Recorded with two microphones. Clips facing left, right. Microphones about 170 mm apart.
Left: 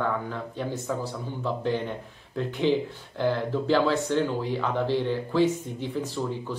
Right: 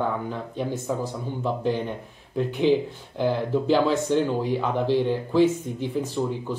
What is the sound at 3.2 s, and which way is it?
Speech, 15° right (ahead or behind).